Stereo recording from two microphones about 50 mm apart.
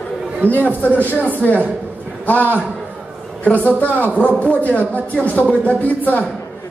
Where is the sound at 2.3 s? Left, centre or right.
Left.